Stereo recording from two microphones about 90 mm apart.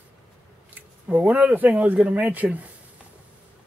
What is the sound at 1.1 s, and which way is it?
Speech, 20° right (ahead or behind).